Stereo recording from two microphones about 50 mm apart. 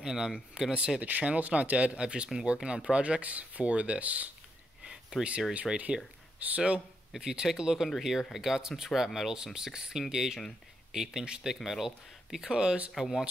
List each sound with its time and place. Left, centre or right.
0.0 s speech: centre
1.0 s speech: right
4.8 s a sound: centre
5.7 s speech: centre
6.4 s speech: right
7.2 s speech: centre
12.9 s speech: centre